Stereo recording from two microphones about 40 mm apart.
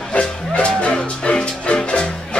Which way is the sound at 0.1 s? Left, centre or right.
Left.